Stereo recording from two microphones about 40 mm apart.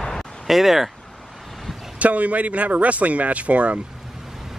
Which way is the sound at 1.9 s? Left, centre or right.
Right.